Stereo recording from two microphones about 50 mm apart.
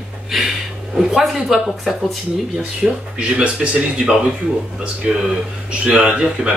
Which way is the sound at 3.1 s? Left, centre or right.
Right.